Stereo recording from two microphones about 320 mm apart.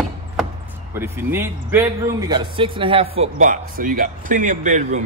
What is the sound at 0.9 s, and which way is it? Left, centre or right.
A man's voice, centre.